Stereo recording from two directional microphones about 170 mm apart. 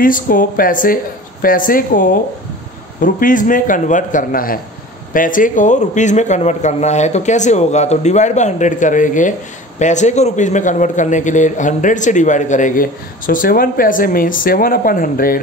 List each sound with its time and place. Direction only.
0.0 s a man's voice: 55° left (ahead or behind)